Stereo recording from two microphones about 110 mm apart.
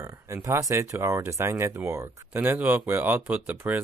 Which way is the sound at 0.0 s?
25° right (ahead or behind).